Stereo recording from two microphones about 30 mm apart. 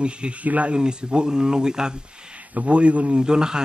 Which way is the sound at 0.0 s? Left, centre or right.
Right.